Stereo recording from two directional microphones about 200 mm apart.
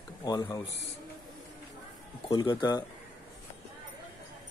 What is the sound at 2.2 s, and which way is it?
Speech, 20° left (ahead or behind).